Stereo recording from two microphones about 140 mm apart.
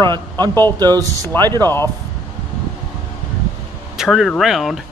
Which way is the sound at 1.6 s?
15° left (ahead or behind).